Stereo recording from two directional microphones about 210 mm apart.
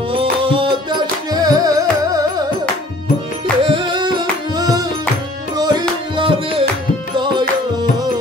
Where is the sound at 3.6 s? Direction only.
25° right (ahead or behind).